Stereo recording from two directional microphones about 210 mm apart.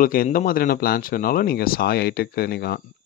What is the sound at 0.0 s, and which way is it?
A man's voice, 40° left (ahead or behind).